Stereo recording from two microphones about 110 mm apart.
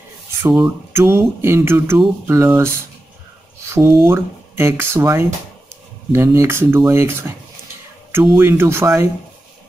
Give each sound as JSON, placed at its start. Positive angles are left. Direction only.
{"t": 0.9, "sound": "speech", "side_deg": -20}